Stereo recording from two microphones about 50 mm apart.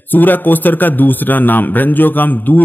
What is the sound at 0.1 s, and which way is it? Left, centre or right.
A man's voice, left.